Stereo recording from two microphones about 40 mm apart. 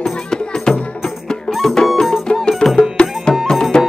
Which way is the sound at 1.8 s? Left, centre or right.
Left.